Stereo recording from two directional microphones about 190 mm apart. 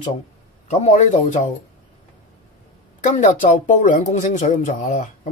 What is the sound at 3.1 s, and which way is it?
Speech, 40° left (ahead or behind).